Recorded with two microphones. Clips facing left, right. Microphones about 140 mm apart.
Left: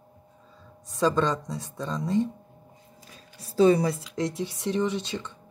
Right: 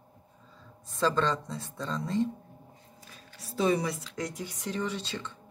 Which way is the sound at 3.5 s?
35° left (ahead or behind).